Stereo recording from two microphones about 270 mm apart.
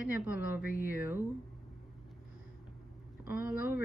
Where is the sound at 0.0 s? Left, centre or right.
Centre.